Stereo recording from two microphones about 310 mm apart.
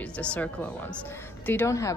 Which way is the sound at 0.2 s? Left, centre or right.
Centre.